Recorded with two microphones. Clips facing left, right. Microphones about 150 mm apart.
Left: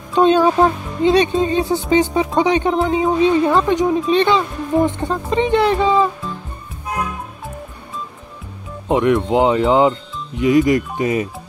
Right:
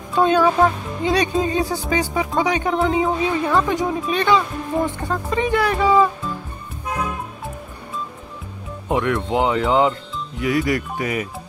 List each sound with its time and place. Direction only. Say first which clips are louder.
0.1 s speech: left 3 dB; 20° left (ahead or behind)
8.8 s speech: left 5 dB; 20° left (ahead or behind)